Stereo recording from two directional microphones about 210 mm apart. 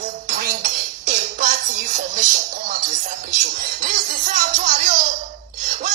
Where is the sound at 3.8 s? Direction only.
35° right (ahead or behind).